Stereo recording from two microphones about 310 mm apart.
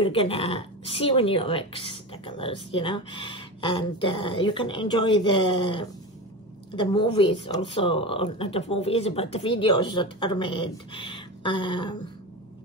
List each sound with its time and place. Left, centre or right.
0.0 s speech: centre